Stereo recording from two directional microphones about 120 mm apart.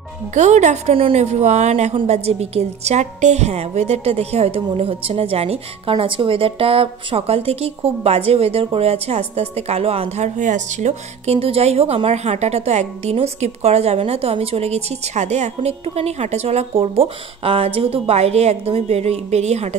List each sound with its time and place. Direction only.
0.3 s a woman's voice: 75° right (ahead or behind)
11.3 s a woman's voice: 55° right (ahead or behind)